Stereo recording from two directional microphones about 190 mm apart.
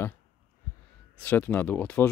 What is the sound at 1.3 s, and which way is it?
Speech, 10° left (ahead or behind).